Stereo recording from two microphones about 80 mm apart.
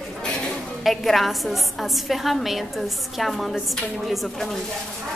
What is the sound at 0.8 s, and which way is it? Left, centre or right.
A woman's voice, centre.